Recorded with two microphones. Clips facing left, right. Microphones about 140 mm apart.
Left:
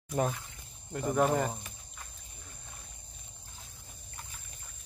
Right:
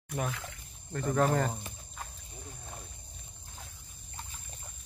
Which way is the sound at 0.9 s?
10° left (ahead or behind).